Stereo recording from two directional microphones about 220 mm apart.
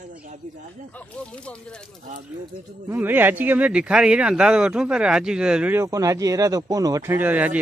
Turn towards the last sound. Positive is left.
turn(degrees=-5)  # may be behind; listen again after turning